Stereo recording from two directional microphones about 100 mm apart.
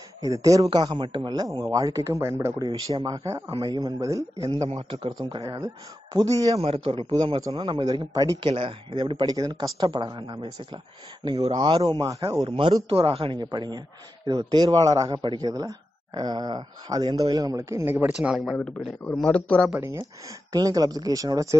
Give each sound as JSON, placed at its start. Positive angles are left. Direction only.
{"t": 0.2, "sound": "speech", "side_deg": -35}
{"t": 0.7, "sound": "speech", "side_deg": -45}
{"t": 2.6, "sound": "a man's voice", "side_deg": -45}
{"t": 6.6, "sound": "a man's voice", "side_deg": -65}
{"t": 7.3, "sound": "speech", "side_deg": -45}
{"t": 8.4, "sound": "a man's voice", "side_deg": -60}
{"t": 12.4, "sound": "a man's voice", "side_deg": -60}
{"t": 18.0, "sound": "speech", "side_deg": -10}
{"t": 18.6, "sound": "speech", "side_deg": 10}
{"t": 19.7, "sound": "speech", "side_deg": -25}
{"t": 20.5, "sound": "speech", "side_deg": -35}